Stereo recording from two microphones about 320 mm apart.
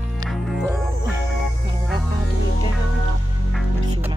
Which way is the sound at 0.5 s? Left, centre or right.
Centre.